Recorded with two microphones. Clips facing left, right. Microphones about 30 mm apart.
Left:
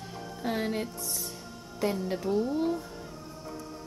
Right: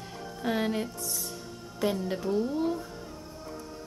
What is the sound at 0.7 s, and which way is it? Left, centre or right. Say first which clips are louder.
Speech: right 1 dB; centre.